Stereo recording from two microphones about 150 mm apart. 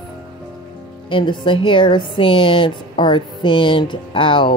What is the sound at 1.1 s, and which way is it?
Speech, 35° left (ahead or behind).